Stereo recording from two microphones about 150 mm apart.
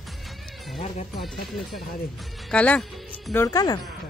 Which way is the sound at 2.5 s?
10° left (ahead or behind).